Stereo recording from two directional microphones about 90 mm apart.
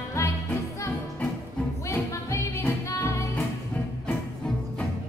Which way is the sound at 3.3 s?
20° left (ahead or behind).